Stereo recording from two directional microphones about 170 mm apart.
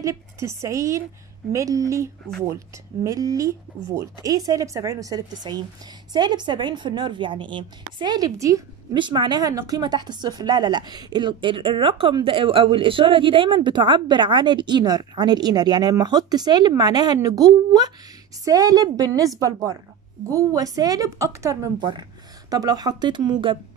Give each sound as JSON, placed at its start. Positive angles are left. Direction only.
{"t": 0.0, "sound": "a woman's voice", "side_deg": -15}